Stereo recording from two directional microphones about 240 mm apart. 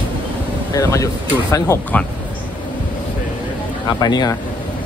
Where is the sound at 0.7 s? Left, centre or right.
Centre.